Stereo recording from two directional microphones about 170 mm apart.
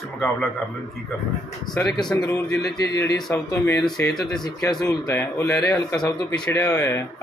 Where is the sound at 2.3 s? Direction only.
20° left (ahead or behind).